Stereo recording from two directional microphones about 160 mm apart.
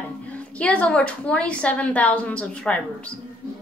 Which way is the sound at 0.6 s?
10° left (ahead or behind).